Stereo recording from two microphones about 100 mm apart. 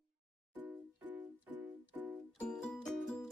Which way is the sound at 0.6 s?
15° right (ahead or behind).